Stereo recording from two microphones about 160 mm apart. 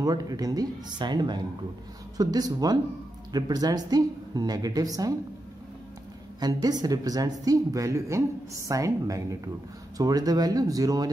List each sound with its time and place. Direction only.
0.0 s speech: 25° right (ahead or behind)
6.4 s speech: 25° right (ahead or behind)